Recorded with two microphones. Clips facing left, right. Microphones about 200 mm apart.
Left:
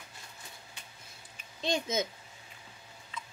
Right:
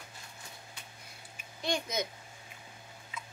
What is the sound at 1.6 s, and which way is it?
Speech, 25° left (ahead or behind).